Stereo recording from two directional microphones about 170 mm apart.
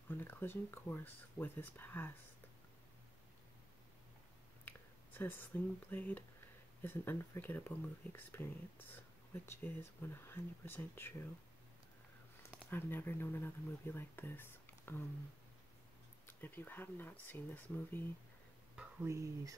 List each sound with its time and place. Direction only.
0.1 s speech: 15° left (ahead or behind)
4.6 s a sound: 10° left (ahead or behind)
5.9 s speech: 10° left (ahead or behind)
12.5 s speech: 10° left (ahead or behind)
16.3 s speech: 10° left (ahead or behind)
18.8 s speech: 15° right (ahead or behind)